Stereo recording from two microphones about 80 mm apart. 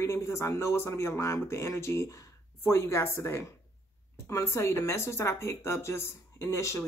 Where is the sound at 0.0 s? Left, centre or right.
Left.